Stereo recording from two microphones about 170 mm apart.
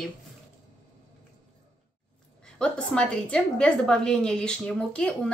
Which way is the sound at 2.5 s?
5° left (ahead or behind).